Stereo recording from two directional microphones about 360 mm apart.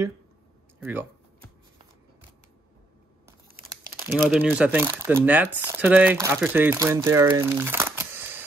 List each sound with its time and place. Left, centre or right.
0.7 s speech: centre
3.6 s speech: centre